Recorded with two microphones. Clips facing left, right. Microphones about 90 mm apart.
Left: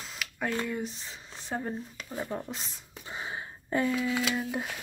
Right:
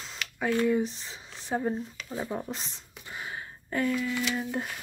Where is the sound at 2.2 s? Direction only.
15° right (ahead or behind).